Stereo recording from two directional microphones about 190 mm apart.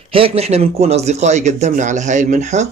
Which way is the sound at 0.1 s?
30° right (ahead or behind).